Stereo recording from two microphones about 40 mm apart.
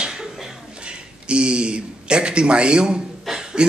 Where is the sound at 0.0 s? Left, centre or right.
Centre.